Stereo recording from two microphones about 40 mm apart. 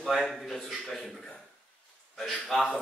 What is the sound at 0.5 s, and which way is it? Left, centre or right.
Speech, centre.